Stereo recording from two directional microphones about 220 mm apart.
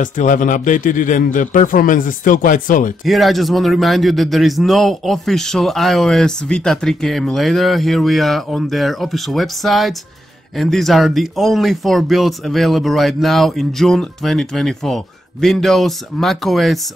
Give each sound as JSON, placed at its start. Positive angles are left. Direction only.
{"t": 0.0, "sound": "speech", "side_deg": 35}
{"t": 3.1, "sound": "a man's voice", "side_deg": 0}